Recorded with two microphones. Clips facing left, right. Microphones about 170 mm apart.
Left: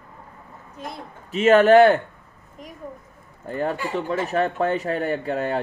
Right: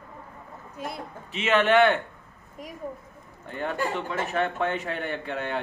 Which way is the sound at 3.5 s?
40° left (ahead or behind).